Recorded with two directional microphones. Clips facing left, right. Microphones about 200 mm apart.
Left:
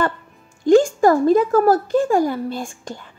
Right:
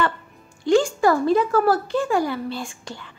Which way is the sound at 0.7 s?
45° left (ahead or behind).